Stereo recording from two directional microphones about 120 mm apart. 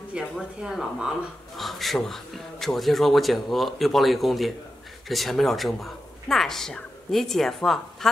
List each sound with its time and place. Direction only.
0.1 s speech: 10° right (ahead or behind)